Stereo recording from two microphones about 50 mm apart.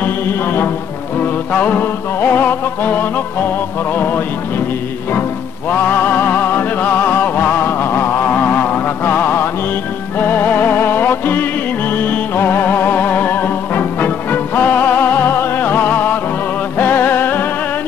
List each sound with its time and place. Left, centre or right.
0.0 s music: left
1.2 s music: left
5.7 s music: left
8.3 s music: left